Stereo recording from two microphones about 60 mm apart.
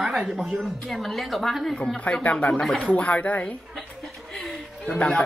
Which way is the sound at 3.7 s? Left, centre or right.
Centre.